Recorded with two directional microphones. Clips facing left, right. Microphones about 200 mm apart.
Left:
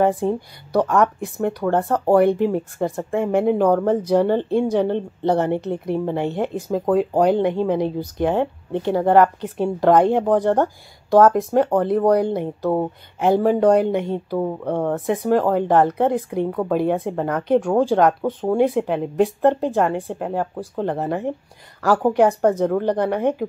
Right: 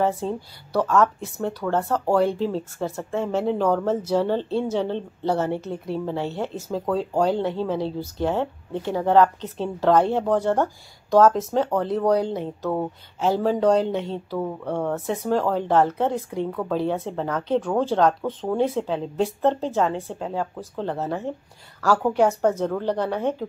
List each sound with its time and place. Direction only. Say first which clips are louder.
0.0 s speech: left 5 dB; 15° left (ahead or behind)